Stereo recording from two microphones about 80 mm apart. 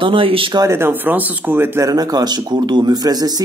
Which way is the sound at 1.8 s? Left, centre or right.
Right.